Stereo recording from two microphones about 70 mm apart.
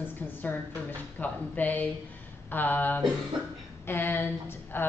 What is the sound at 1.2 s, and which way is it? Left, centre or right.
A woman's voice, left.